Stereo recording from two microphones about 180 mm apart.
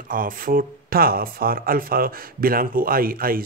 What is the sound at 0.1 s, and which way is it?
Speech, 50° right (ahead or behind).